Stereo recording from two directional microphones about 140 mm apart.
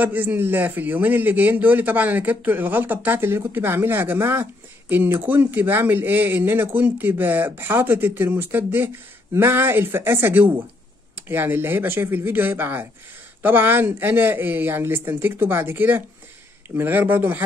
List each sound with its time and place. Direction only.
0.0 s a man's voice: 10° right (ahead or behind)